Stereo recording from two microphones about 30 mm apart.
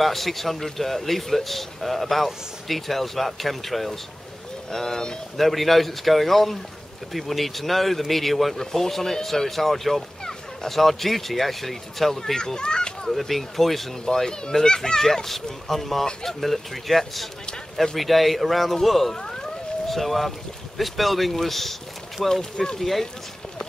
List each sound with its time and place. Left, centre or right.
0.0 s a man's voice: centre
4.6 s speech: centre
5.4 s a man's voice: centre
12.4 s speech: left
13.2 s a man's voice: centre
14.0 s a man's voice: centre
22.3 s speech: centre
22.8 s a man's voice: centre